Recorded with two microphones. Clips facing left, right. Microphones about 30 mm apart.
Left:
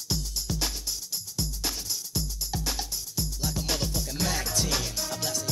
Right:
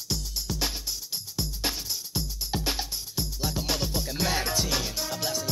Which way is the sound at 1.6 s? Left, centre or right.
Right.